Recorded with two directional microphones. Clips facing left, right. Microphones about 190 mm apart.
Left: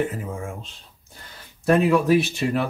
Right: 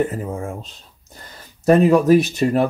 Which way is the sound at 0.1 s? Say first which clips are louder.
Right 5 dB; 40° right (ahead or behind).